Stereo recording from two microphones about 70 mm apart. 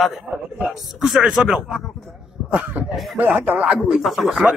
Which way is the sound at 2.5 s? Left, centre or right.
Right.